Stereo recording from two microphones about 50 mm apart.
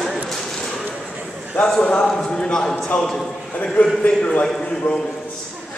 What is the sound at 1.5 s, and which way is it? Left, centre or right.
Speech, left.